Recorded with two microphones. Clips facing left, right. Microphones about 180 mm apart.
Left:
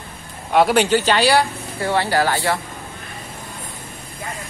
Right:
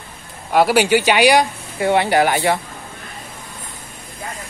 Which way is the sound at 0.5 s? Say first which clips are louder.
Right 1 dB; 5° right (ahead or behind).